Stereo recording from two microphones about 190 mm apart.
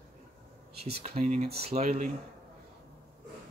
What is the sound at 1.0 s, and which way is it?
Speech, 35° right (ahead or behind).